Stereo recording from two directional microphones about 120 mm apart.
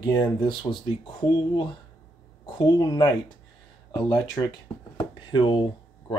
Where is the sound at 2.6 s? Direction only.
35° left (ahead or behind).